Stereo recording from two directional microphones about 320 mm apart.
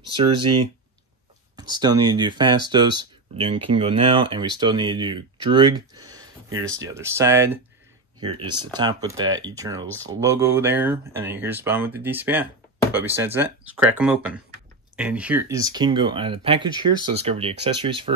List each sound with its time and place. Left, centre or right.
0.1 s speech: centre
1.6 s speech: centre